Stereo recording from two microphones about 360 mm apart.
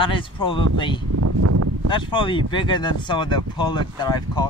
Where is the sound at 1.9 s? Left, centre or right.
Centre.